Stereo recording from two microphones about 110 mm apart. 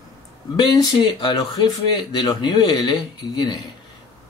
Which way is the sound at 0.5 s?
40° left (ahead or behind).